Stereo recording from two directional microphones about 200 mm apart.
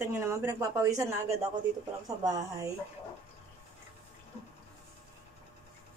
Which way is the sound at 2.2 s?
15° right (ahead or behind).